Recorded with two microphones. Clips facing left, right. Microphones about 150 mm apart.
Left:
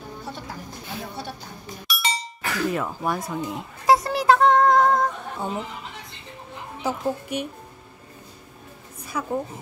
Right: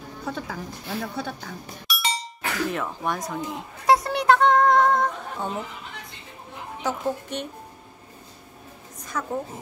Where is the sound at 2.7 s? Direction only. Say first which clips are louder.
Left 2 dB; 5° left (ahead or behind).